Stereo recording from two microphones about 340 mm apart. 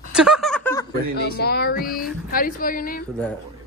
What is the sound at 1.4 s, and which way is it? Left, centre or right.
A woman's voice, left.